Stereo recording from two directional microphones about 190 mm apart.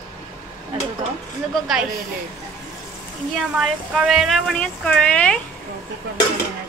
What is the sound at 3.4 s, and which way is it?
Speech, centre (ahead or behind).